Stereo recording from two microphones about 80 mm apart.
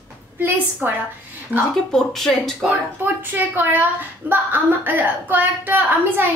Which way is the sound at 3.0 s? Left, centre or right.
Right.